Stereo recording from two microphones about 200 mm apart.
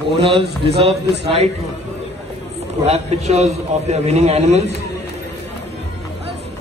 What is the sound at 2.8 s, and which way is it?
A man's voice, 30° right (ahead or behind).